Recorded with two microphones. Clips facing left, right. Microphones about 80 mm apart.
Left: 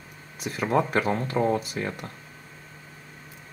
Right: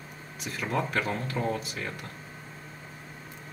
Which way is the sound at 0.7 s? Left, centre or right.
Left.